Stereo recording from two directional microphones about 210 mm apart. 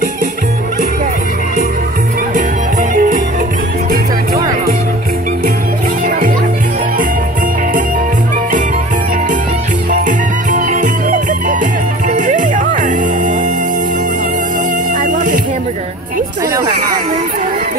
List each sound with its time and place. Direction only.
2.9 s music: 40° right (ahead or behind)
6.0 s music: 40° right (ahead or behind)
9.8 s music: 35° right (ahead or behind)
15.0 s music: 35° right (ahead or behind)